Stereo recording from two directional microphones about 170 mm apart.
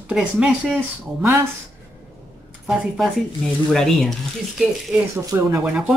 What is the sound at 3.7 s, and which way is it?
Speech, centre (ahead or behind).